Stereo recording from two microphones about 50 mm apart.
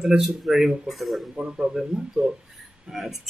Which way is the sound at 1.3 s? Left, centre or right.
Centre.